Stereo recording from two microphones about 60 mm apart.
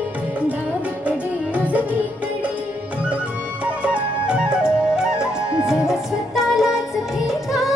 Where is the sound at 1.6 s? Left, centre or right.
Right.